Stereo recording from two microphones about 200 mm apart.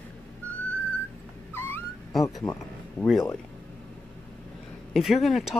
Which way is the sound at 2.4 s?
10° left (ahead or behind).